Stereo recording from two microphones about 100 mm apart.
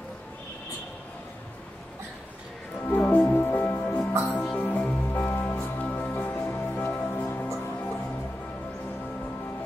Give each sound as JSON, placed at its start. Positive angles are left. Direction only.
{"t": 2.9, "sound": "music", "side_deg": 15}